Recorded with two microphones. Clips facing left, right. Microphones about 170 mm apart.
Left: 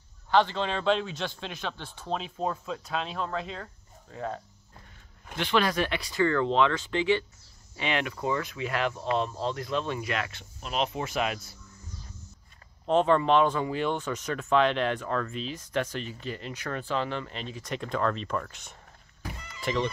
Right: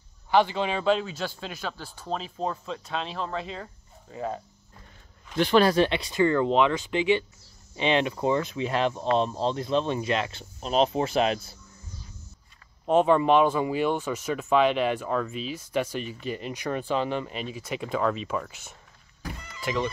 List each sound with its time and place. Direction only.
0.3 s a man's voice: 10° right (ahead or behind)
5.4 s speech: 35° right (ahead or behind)
12.8 s speech: 10° right (ahead or behind)